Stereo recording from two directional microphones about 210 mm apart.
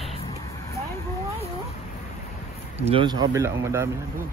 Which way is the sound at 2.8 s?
25° right (ahead or behind).